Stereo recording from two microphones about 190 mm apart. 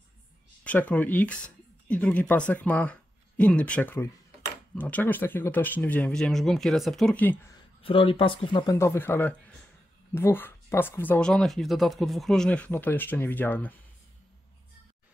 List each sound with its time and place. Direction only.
0.7 s speech: 5° left (ahead or behind)
7.5 s speech: 30° left (ahead or behind)
8.7 s speech: 15° left (ahead or behind)